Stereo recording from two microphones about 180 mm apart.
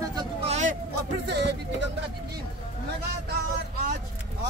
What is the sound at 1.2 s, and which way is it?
Speech, 70° right (ahead or behind).